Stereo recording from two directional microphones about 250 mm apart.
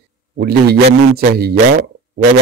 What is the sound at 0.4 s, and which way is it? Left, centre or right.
Speech, right.